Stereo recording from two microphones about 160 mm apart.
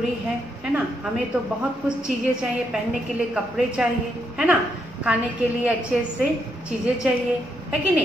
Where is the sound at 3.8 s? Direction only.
5° right (ahead or behind).